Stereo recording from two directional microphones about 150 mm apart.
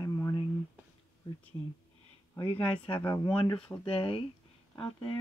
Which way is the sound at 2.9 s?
30° left (ahead or behind).